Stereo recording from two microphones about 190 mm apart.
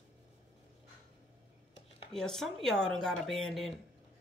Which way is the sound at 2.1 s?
Centre (ahead or behind).